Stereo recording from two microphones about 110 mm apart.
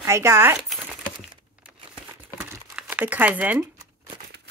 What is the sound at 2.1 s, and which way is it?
Crumpling, 25° right (ahead or behind).